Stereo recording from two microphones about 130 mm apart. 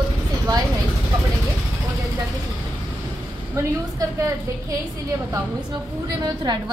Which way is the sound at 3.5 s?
25° right (ahead or behind).